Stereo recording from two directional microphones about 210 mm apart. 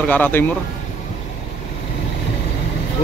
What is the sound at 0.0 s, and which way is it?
Speech, 10° left (ahead or behind).